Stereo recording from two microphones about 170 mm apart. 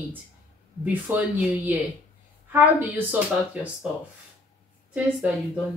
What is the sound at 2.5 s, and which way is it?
Speech, 10° right (ahead or behind).